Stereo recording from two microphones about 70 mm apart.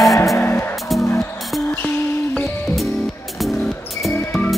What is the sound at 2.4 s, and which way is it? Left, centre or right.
Music, centre.